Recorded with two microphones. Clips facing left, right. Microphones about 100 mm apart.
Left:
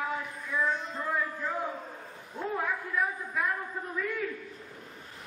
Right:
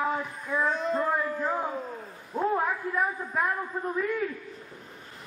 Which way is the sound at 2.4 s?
40° right (ahead or behind).